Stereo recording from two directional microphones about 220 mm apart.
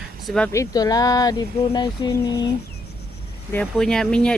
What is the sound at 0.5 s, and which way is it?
Speech, 15° left (ahead or behind).